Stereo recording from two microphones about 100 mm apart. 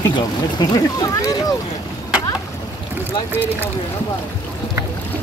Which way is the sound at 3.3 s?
20° right (ahead or behind).